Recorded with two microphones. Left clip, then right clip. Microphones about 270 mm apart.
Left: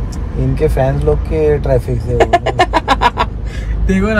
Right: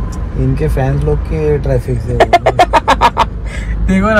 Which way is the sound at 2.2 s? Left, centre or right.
Centre.